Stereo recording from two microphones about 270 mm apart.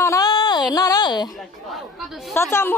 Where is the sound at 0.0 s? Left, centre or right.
Centre.